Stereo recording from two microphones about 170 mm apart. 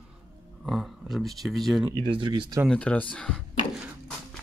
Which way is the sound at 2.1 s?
30° right (ahead or behind).